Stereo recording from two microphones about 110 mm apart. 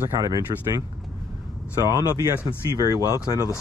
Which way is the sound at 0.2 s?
35° right (ahead or behind).